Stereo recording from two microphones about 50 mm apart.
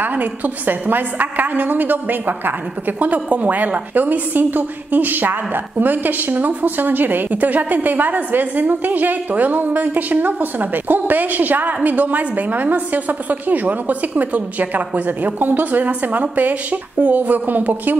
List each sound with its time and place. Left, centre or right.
0.0 s a woman's voice: right